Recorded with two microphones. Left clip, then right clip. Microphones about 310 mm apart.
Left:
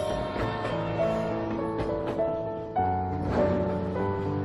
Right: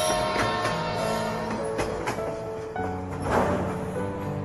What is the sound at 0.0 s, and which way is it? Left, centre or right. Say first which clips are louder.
Music: right 5 dB; right.